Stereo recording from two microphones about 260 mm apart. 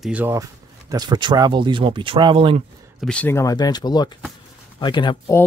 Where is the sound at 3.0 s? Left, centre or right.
Centre.